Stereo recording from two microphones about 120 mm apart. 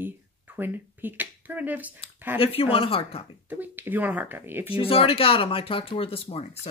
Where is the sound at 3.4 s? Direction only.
15° right (ahead or behind).